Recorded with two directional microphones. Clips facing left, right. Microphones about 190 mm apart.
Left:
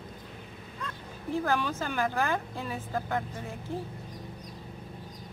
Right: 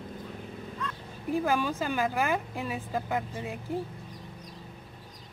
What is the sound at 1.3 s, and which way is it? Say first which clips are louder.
Speech: right 2 dB; 15° right (ahead or behind).